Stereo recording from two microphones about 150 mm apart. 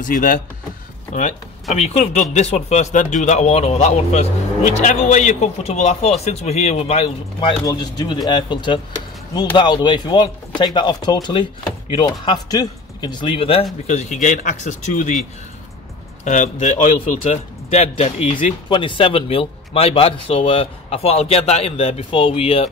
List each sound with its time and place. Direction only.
0.0 s speech: 65° left (ahead or behind)
1.1 s speech: 50° left (ahead or behind)
7.3 s a man's voice: 30° left (ahead or behind)
13.8 s speech: 50° left (ahead or behind)
16.3 s a man's voice: 55° left (ahead or behind)